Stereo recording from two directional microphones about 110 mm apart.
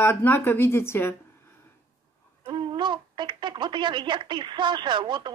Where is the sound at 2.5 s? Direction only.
45° right (ahead or behind).